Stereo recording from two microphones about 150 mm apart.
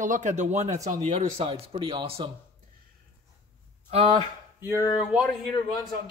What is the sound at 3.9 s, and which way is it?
Speech, 40° right (ahead or behind).